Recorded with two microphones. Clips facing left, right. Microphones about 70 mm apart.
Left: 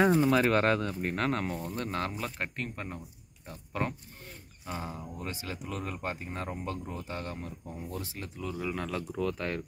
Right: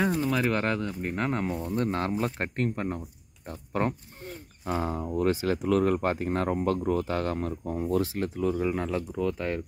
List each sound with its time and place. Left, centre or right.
0.0 s speech: centre
1.1 s speech: centre
1.8 s speech: right
4.6 s speech: right
6.9 s speech: right
8.2 s speech: right
8.5 s speech: centre
9.1 s speech: centre